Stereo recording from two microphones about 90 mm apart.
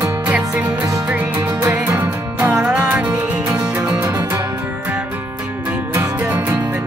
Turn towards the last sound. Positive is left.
turn(degrees=-25)  # may be behind; listen again after turning